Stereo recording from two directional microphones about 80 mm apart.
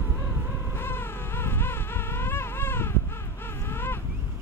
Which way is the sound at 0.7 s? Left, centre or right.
Left.